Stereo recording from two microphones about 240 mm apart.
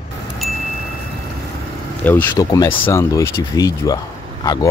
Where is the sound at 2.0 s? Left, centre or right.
Centre.